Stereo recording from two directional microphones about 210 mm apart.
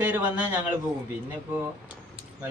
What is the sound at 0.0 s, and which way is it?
Speech, 5° right (ahead or behind).